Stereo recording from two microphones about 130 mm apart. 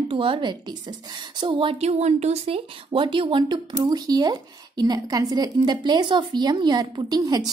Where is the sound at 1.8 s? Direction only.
55° right (ahead or behind).